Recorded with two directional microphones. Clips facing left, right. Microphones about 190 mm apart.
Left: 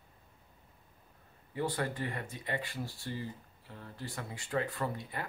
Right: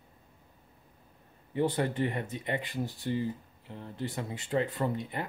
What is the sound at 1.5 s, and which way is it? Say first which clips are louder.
Speech: right 6 dB; 20° right (ahead or behind).